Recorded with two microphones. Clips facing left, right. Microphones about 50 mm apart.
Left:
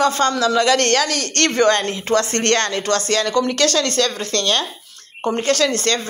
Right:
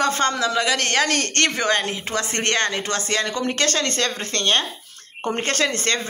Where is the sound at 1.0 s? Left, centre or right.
Right.